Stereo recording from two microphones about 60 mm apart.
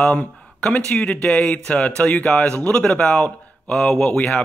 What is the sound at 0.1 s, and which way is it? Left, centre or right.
A man's voice, centre.